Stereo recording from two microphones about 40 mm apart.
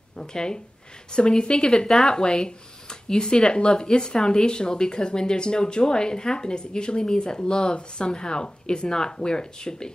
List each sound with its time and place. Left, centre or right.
0.2 s speech: centre
2.1 s speech: left